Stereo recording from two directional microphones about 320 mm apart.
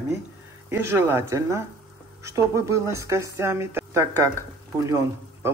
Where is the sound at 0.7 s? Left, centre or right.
Centre.